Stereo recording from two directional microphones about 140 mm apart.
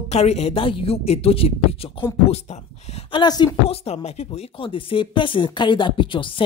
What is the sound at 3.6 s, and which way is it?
Speech, 50° left (ahead or behind).